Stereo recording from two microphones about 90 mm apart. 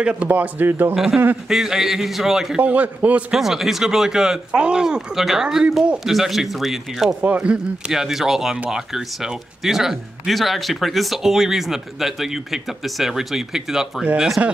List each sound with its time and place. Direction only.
0.0 s speech: 15° right (ahead or behind)
0.9 s speech: 5° right (ahead or behind)
2.6 s a man's voice: 15° right (ahead or behind)
3.3 s speech: 5° right (ahead or behind)
7.2 s speech: 15° right (ahead or behind)